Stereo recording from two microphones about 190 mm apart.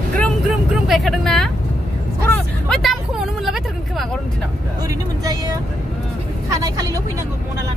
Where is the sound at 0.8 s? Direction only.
Centre (ahead or behind).